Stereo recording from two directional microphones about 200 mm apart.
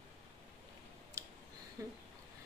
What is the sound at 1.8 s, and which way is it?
Speech, 15° right (ahead or behind).